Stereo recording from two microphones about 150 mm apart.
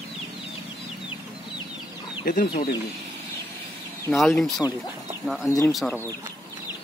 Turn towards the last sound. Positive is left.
turn(degrees=20)  # may be behind; listen again after turning